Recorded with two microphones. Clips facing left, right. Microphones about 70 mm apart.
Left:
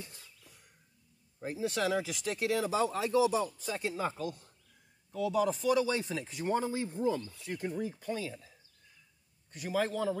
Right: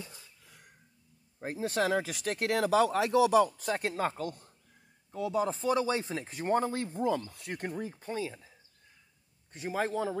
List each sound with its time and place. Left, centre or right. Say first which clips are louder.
1.4 s speech: right 2 dB; right
5.1 s speech: left 1 dB; right
7.7 s speech: left 1 dB; right